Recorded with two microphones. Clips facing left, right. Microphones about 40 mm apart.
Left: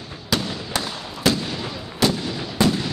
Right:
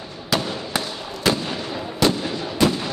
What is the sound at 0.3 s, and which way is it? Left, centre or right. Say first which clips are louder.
Fireworks: right 1 dB; centre.